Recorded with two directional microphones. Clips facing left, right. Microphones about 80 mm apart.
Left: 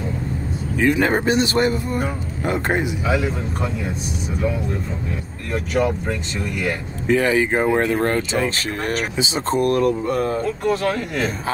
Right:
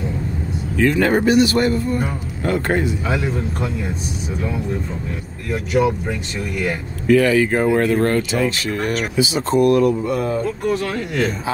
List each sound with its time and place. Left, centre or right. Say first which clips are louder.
0.7 s speech: right 2 dB; centre
3.1 s speech: even; centre
5.5 s speech: right 2 dB; centre
7.1 s speech: right 3 dB; left
9.7 s mantra: right 3 dB; left
10.6 s speech: left 1 dB; centre